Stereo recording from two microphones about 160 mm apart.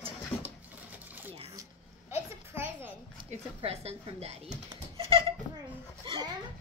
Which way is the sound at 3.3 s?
40° right (ahead or behind).